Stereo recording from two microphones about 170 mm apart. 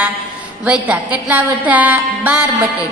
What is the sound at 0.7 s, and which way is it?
A woman's voice, 5° right (ahead or behind).